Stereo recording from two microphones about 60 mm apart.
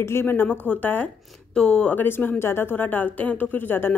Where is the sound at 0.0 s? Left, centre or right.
Left.